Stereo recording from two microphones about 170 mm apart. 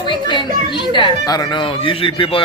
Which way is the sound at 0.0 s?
25° left (ahead or behind).